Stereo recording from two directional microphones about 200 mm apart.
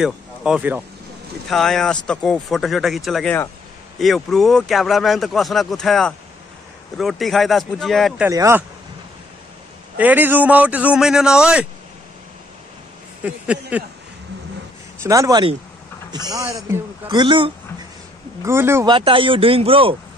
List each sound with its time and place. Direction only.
0.0 s speech: 5° right (ahead or behind)
8.3 s a man's voice: 15° right (ahead or behind)
9.9 s a man's voice: 10° right (ahead or behind)
13.2 s a man's voice: 5° right (ahead or behind)
15.0 s a man's voice: 15° right (ahead or behind)
18.4 s a man's voice: 15° right (ahead or behind)
18.9 s speech: 25° right (ahead or behind)